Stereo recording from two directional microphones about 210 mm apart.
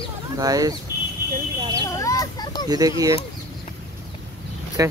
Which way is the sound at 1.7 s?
15° left (ahead or behind).